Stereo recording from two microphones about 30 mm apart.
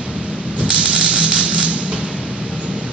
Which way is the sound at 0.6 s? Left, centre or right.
Right.